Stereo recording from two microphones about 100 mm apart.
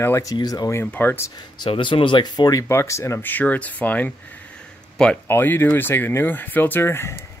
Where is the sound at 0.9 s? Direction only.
20° left (ahead or behind).